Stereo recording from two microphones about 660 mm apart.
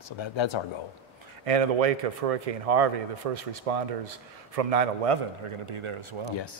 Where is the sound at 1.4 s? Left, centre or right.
Right.